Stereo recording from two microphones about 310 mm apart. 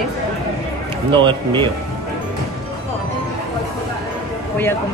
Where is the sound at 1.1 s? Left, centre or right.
Centre.